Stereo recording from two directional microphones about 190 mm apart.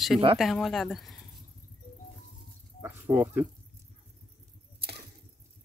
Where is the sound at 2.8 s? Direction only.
10° right (ahead or behind).